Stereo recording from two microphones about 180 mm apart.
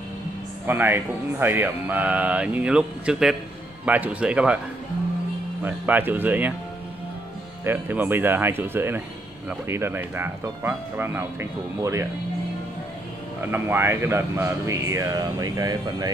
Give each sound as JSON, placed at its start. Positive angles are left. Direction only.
{"t": 0.7, "sound": "speech", "side_deg": -10}
{"t": 5.6, "sound": "speech", "side_deg": -10}
{"t": 7.6, "sound": "speech", "side_deg": -10}
{"t": 13.4, "sound": "speech", "side_deg": -10}